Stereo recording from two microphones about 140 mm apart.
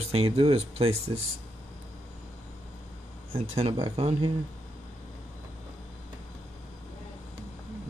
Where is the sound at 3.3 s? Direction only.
45° right (ahead or behind).